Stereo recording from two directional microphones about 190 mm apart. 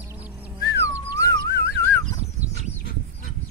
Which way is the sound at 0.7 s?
15° left (ahead or behind).